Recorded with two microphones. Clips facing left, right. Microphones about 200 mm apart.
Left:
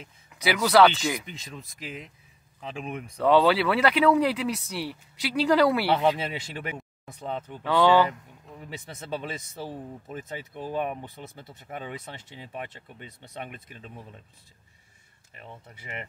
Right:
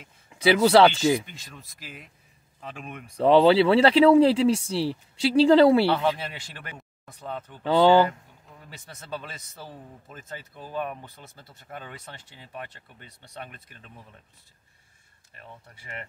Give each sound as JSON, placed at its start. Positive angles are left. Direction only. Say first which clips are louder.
{"t": 0.3, "sound": "speech", "louder": "right 5 dB", "side_deg": -30}
{"t": 3.2, "sound": "speech", "louder": "right 4 dB", "side_deg": -25}
{"t": 7.1, "sound": "speech", "louder": "left 2 dB", "side_deg": 25}
{"t": 7.6, "sound": "speech", "louder": "right 3 dB", "side_deg": -30}
{"t": 9.0, "sound": "speech", "louder": "left 3 dB", "side_deg": 20}
{"t": 15.4, "sound": "speech", "louder": "left 2 dB", "side_deg": 20}